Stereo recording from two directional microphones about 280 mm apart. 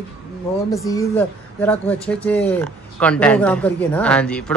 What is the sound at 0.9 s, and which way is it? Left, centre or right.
Speech, centre.